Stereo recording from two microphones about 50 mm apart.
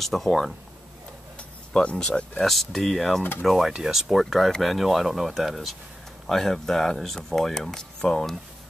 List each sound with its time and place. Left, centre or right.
0.0 s speech: centre
1.7 s speech: centre
2.3 s speech: centre